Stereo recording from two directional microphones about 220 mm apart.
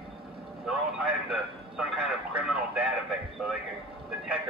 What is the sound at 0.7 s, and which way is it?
A man's voice, 5° right (ahead or behind).